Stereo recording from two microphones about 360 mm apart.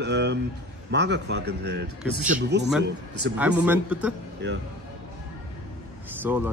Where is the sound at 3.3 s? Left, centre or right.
Centre.